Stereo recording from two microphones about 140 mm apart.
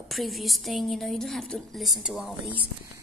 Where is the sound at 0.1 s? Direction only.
Centre (ahead or behind).